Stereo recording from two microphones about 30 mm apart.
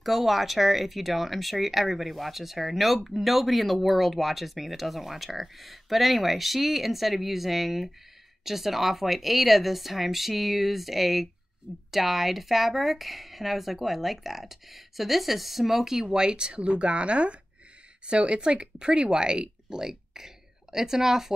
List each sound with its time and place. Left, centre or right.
0.0 s speech: centre
16.1 s speech: right
19.8 s a sound: centre